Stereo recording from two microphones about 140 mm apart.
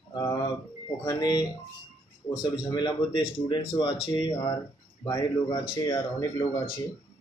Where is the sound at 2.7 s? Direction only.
30° left (ahead or behind).